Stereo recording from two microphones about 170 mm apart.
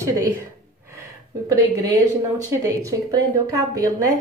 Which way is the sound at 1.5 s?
20° right (ahead or behind).